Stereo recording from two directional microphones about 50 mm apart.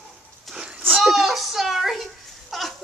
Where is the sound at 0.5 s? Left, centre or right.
Right.